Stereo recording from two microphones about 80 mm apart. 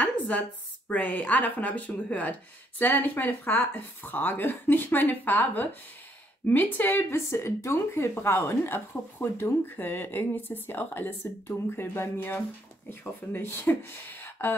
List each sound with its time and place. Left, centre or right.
0.8 s speech: centre